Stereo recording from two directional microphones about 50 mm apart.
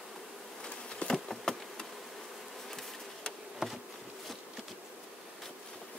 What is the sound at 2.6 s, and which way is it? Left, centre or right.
Bee, centre.